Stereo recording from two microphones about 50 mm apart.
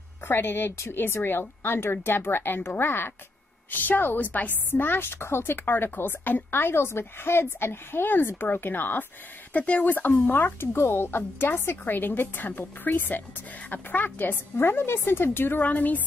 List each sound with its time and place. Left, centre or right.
0.3 s a woman's voice: left
9.5 s a woman's voice: left
15.6 s a woman's voice: left